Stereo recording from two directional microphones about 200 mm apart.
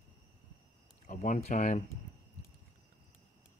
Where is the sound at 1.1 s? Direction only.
35° left (ahead or behind).